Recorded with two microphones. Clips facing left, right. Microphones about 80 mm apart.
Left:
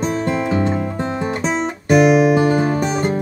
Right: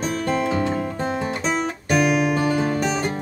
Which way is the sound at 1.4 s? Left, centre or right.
Left.